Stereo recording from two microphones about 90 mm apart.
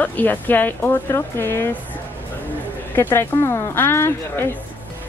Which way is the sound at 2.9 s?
30° left (ahead or behind).